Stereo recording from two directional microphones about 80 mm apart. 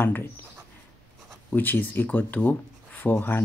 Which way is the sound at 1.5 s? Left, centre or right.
Left.